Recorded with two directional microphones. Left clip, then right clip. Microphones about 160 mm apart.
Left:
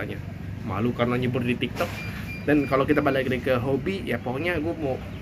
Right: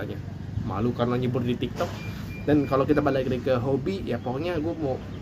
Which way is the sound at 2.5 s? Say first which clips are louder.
Left 1 dB; 5° right (ahead or behind).